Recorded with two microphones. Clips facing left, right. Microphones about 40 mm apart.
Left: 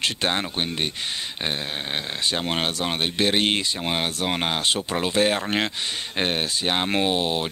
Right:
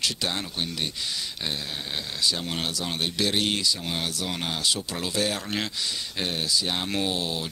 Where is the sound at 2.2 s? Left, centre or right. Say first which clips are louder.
Left 3 dB; left.